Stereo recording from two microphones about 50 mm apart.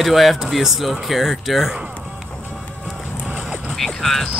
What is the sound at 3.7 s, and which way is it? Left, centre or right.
Music, centre.